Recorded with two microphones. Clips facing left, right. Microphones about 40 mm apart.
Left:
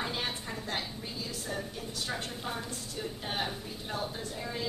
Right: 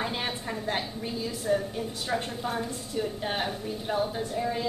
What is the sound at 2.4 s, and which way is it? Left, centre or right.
A woman's voice, centre.